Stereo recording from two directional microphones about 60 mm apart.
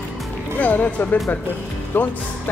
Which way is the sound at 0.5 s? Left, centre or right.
Left.